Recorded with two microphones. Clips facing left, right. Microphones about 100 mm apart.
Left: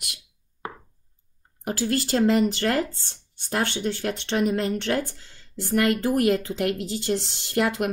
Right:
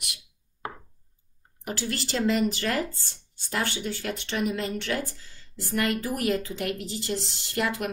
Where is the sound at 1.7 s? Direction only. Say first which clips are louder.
Left 7 dB; 40° left (ahead or behind).